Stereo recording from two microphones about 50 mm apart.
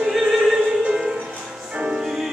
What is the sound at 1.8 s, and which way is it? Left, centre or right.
Music, centre.